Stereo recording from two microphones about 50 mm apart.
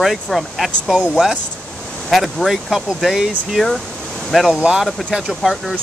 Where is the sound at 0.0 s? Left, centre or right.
Centre.